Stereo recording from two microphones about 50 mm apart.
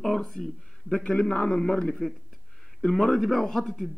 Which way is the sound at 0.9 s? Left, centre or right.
Left.